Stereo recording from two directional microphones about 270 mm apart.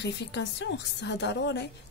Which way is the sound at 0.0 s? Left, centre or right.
Left.